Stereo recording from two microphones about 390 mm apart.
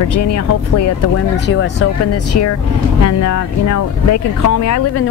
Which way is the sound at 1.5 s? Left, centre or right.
Left.